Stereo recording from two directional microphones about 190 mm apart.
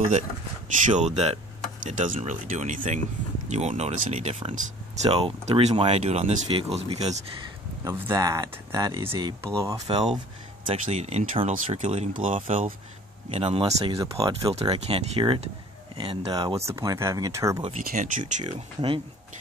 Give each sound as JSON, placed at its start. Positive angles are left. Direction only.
{"t": 0.8, "sound": "speech", "side_deg": -40}
{"t": 7.8, "sound": "speech", "side_deg": -15}
{"t": 13.3, "sound": "speech", "side_deg": -30}
{"t": 14.5, "sound": "speech", "side_deg": -30}
{"t": 17.6, "sound": "speech", "side_deg": -30}
{"t": 17.8, "sound": "speech", "side_deg": -45}
{"t": 18.5, "sound": "speech", "side_deg": -30}